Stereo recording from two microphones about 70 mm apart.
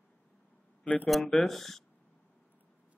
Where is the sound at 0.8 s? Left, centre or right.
Left.